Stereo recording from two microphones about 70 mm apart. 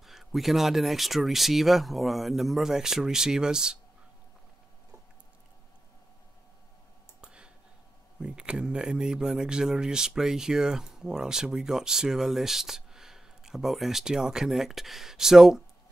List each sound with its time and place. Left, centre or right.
0.0 s speech: centre
7.2 s a sound: centre
8.2 s speech: centre